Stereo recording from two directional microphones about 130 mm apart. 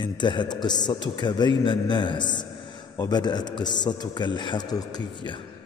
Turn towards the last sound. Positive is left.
turn(degrees=35)  # may be behind; listen again after turning